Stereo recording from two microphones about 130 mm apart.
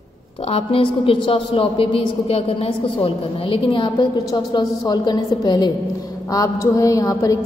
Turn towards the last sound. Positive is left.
turn(degrees=25)  # may be behind; listen again after turning